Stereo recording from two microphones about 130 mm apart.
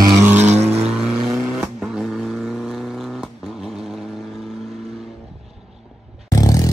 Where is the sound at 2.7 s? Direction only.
5° right (ahead or behind).